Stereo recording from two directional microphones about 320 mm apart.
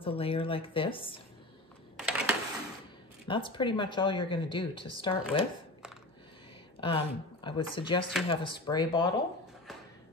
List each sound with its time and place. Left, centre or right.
0.0 s speech: centre
2.0 s a sound: centre
3.3 s speech: centre
6.8 s speech: centre